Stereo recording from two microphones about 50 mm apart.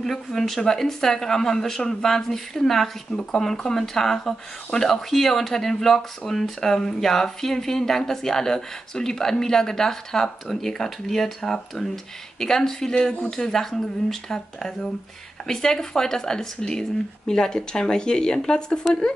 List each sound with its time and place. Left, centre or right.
0.0 s speech: centre